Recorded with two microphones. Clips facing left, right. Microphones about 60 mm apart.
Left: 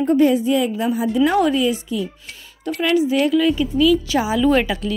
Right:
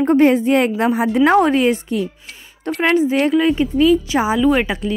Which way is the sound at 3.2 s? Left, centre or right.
Right.